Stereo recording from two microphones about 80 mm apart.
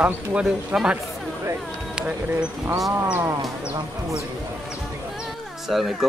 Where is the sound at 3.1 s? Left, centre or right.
Right.